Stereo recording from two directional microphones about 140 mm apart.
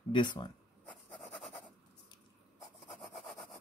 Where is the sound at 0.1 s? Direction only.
35° left (ahead or behind).